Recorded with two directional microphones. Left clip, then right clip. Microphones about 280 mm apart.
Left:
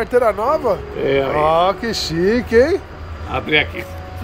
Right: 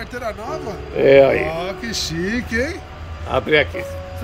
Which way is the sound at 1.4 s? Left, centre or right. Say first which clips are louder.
Left 9 dB; centre.